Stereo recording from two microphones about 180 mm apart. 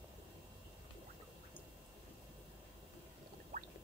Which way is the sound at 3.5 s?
50° right (ahead or behind).